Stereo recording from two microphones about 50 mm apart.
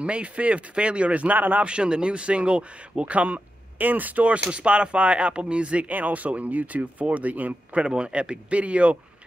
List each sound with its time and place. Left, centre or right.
0.0 s speech: right
1.6 s speech: centre
7.8 s speech: centre